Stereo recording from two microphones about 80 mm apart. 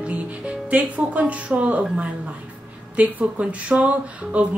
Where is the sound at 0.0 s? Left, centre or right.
Centre.